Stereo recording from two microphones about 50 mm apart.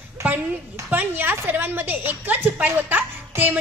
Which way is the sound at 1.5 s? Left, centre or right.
Right.